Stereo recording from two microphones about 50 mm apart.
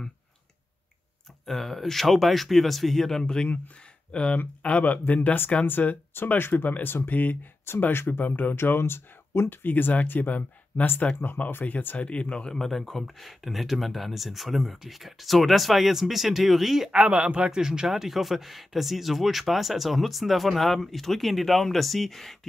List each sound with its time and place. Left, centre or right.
1.4 s speech: centre; by 7.3 s left
7.7 s speech: left
8.1 s speech: left
9.5 s speech: left
12.0 s speech: left
12.5 s speech: centre
16.9 s speech: right
17.6 s speech: centre